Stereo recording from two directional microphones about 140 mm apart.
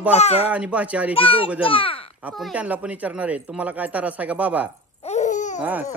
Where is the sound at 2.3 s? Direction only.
5° right (ahead or behind).